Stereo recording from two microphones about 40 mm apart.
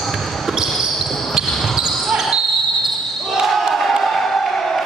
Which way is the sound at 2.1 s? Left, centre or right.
Centre.